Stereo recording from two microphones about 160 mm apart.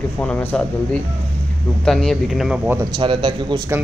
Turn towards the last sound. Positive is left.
turn(degrees=-30)  # may be behind; listen again after turning